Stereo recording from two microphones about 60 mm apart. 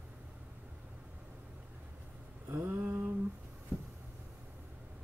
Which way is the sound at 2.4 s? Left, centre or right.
Right.